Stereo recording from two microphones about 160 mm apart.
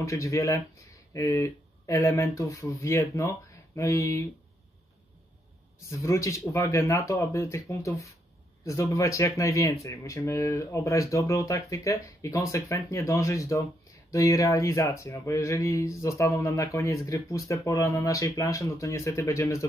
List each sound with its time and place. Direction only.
0.0 s speech: 20° left (ahead or behind)
5.9 s speech: 20° left (ahead or behind)